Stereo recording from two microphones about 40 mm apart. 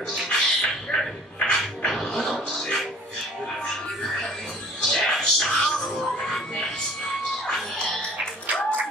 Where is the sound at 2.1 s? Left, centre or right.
Centre.